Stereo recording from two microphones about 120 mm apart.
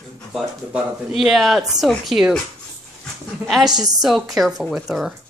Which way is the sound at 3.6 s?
35° right (ahead or behind).